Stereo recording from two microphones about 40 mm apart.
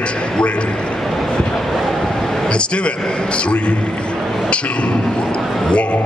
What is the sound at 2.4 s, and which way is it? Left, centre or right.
A man's voice, left.